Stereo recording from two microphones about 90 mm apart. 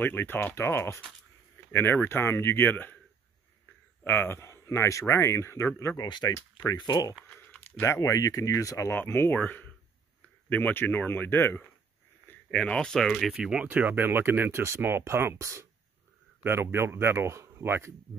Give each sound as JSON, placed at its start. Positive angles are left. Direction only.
{"t": 0.0, "sound": "speech", "side_deg": 25}
{"t": 4.0, "sound": "speech", "side_deg": 25}
{"t": 5.9, "sound": "speech", "side_deg": 55}
{"t": 6.3, "sound": "speech", "side_deg": 35}
{"t": 6.8, "sound": "speech", "side_deg": 50}
{"t": 7.8, "sound": "speech", "side_deg": 35}
{"t": 12.6, "sound": "speech", "side_deg": 10}
{"t": 13.3, "sound": "speech", "side_deg": -10}
{"t": 13.7, "sound": "speech", "side_deg": -20}